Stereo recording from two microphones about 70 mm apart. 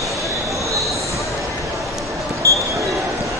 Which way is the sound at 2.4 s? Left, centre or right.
Right.